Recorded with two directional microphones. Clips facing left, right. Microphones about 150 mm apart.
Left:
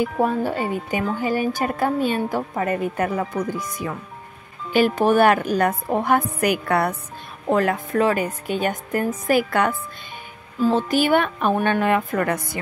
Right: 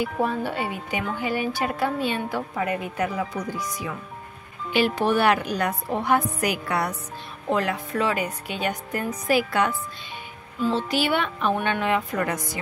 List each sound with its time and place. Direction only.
0.0 s speech: 45° left (ahead or behind)